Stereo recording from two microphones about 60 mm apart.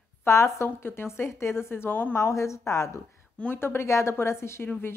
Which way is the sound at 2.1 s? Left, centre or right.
Left.